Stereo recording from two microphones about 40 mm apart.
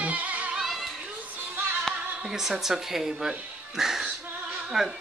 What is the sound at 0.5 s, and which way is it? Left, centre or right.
Singing, centre.